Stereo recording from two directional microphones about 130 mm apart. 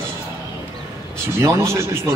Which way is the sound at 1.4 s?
20° right (ahead or behind).